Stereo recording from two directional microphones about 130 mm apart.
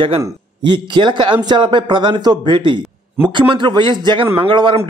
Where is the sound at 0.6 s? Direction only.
35° right (ahead or behind).